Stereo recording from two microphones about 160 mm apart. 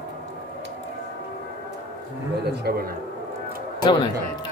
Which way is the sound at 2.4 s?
90° right.